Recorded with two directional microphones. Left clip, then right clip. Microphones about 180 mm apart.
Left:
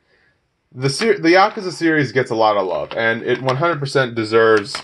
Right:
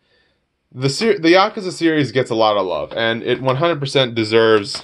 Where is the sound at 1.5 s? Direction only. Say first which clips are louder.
Even; 25° right (ahead or behind).